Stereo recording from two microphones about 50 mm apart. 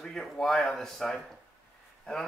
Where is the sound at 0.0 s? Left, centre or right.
Centre.